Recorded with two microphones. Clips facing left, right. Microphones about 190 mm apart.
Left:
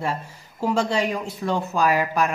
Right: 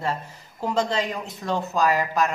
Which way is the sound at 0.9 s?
10° left (ahead or behind).